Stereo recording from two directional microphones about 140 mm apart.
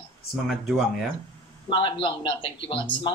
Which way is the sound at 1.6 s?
35° left (ahead or behind).